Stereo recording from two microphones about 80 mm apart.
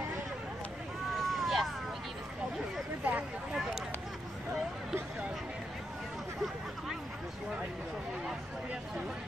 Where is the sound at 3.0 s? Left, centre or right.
Centre.